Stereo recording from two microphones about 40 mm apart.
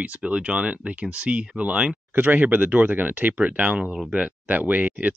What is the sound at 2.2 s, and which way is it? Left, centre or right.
Speech, right.